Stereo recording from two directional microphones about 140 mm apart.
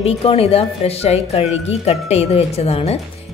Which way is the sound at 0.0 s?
45° left (ahead or behind).